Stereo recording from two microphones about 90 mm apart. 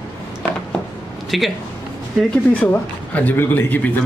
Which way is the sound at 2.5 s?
15° left (ahead or behind).